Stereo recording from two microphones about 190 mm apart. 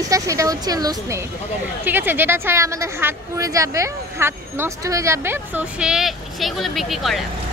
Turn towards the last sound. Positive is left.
turn(degrees=0)  # may be behind; listen again after turning